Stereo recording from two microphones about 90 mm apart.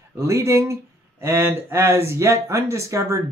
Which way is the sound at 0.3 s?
30° right (ahead or behind).